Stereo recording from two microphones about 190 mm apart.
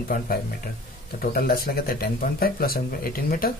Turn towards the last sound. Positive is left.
turn(degrees=50)  # may be behind; listen again after turning